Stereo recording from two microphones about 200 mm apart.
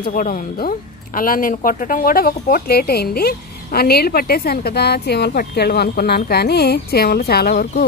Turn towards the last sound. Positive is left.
turn(degrees=50)  # may be behind; listen again after turning